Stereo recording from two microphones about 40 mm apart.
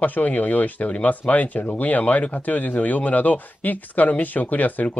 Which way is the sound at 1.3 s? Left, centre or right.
Left.